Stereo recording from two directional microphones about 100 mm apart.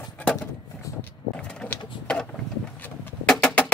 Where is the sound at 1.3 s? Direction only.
10° left (ahead or behind).